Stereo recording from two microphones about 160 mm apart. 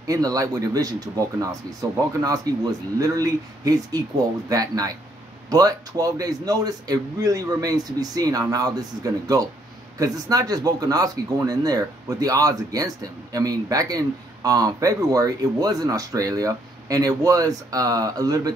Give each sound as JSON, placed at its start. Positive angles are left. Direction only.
{"t": 0.0, "sound": "speech", "side_deg": -20}